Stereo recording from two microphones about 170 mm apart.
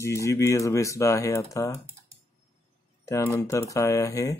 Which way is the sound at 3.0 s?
15° left (ahead or behind).